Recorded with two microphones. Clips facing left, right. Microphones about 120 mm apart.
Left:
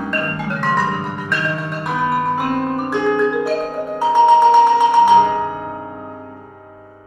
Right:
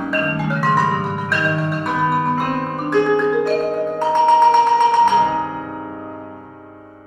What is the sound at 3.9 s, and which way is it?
Music, 5° left (ahead or behind).